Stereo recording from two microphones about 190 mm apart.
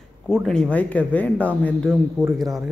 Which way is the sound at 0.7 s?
5° left (ahead or behind).